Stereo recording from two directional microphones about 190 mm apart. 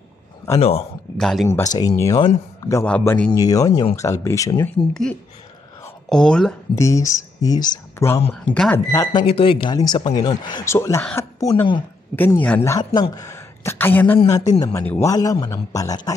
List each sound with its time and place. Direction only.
0.6 s speech: 30° left (ahead or behind)
1.1 s speech: centre (ahead or behind)
1.8 s speech: 20° left (ahead or behind)
6.0 s speech: 5° left (ahead or behind)
6.7 s speech: 15° left (ahead or behind)
9.2 s speech: 30° left (ahead or behind)
12.2 s speech: 10° left (ahead or behind)